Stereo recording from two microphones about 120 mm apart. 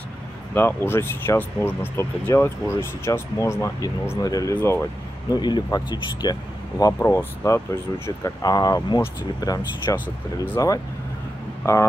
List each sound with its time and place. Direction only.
0.6 s speech: 20° left (ahead or behind)
4.6 s speech: 20° left (ahead or behind)
5.3 s speech: 35° left (ahead or behind)
6.8 s speech: 20° left (ahead or behind)